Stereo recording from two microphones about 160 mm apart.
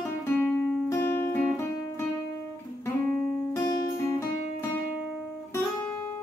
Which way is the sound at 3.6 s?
15° left (ahead or behind).